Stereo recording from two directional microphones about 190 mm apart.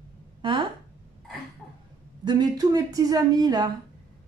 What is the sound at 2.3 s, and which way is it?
A woman's voice, 20° right (ahead or behind).